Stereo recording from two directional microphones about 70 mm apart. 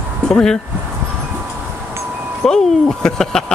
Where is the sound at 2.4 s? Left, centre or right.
Centre.